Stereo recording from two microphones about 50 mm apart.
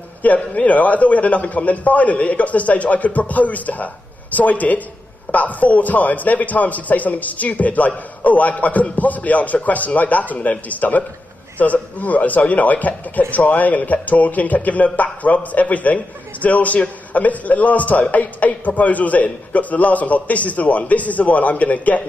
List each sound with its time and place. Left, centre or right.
0.2 s a man's voice: left